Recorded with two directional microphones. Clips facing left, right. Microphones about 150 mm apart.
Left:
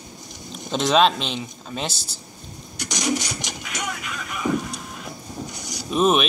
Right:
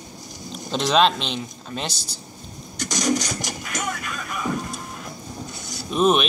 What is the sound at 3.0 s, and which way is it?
Speech, 45° right (ahead or behind).